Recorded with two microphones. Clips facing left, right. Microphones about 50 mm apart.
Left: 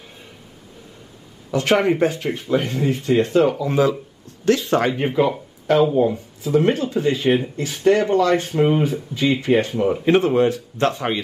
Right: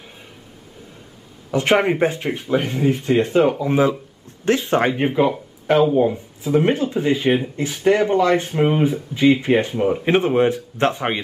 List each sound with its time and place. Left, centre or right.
1.5 s a man's voice: right
5.0 s speech: centre
7.2 s speech: centre
7.8 s speech: centre
10.0 s a man's voice: right